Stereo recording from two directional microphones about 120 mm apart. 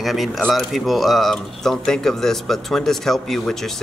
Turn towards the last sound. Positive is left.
turn(degrees=0)  # may be behind; listen again after turning